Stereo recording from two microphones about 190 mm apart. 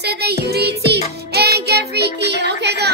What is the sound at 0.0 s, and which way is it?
Music, 60° right (ahead or behind).